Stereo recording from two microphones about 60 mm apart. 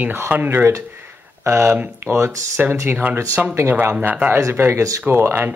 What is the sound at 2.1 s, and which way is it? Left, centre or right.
Speech, right.